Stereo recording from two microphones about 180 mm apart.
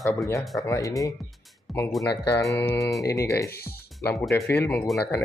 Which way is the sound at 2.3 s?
20° left (ahead or behind).